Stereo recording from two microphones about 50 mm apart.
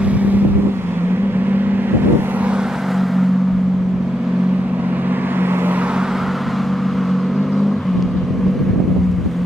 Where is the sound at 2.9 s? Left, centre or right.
Centre.